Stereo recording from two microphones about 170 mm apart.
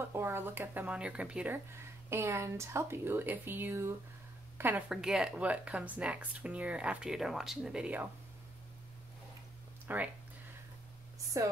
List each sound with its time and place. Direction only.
0.0 s speech: 15° right (ahead or behind)
9.8 s speech: 10° right (ahead or behind)
11.4 s speech: 20° right (ahead or behind)